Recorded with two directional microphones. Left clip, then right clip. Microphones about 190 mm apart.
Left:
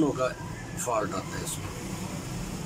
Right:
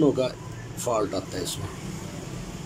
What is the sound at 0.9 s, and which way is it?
Speech, 20° right (ahead or behind).